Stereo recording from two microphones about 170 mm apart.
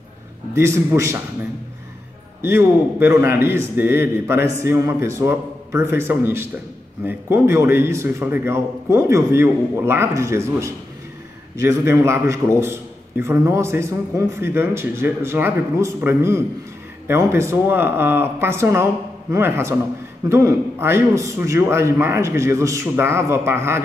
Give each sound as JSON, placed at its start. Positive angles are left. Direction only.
{"t": 0.6, "sound": "a man's voice", "side_deg": -15}
{"t": 2.4, "sound": "a man's voice", "side_deg": -15}